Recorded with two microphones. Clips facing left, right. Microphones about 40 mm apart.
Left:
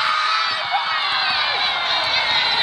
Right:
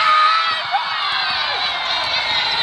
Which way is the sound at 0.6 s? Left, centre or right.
Centre.